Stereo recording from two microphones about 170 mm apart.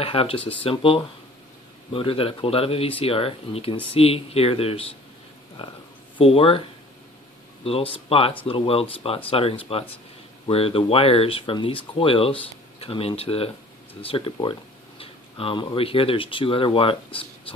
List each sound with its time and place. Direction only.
0.0 s speech: 35° left (ahead or behind)
6.1 s speech: 35° left (ahead or behind)
7.6 s speech: 35° left (ahead or behind)